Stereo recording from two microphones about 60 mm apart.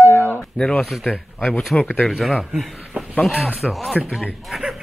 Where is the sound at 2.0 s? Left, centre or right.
Centre.